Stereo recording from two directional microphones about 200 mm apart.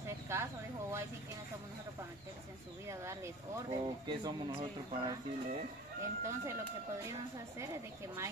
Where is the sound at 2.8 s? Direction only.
15° right (ahead or behind).